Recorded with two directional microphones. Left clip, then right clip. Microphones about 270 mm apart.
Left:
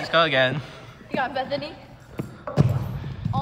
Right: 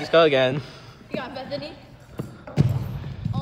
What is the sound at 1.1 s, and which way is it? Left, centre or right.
Speech, centre.